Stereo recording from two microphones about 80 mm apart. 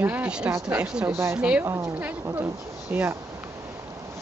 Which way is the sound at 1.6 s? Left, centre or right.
Right.